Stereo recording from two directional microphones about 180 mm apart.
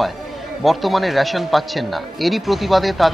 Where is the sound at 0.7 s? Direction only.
Centre (ahead or behind).